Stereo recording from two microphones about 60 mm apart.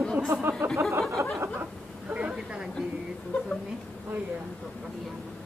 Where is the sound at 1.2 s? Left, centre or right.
Right.